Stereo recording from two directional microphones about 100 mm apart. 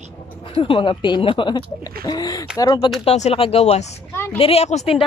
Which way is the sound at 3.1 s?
80° left.